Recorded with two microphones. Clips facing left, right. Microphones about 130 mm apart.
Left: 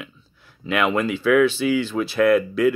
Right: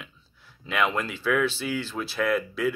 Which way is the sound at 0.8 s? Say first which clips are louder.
Left 5 dB; 5° left (ahead or behind).